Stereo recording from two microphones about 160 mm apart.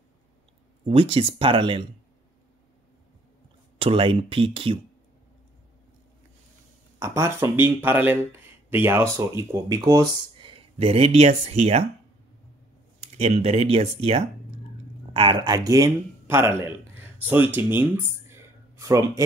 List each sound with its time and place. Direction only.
0.8 s speech: 35° right (ahead or behind)
3.7 s speech: 35° right (ahead or behind)
7.0 s speech: 15° right (ahead or behind); by 11.8 s 40° right (ahead or behind)
13.2 s speech: 40° right (ahead or behind); by 19.2 s 20° right (ahead or behind)